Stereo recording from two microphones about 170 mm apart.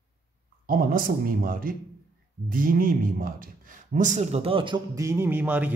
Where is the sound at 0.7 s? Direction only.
55° right (ahead or behind).